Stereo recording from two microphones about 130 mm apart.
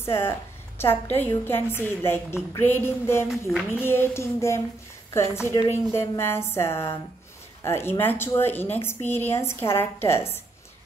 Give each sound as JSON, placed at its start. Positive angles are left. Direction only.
{"t": 0.0, "sound": "a woman's voice", "side_deg": 20}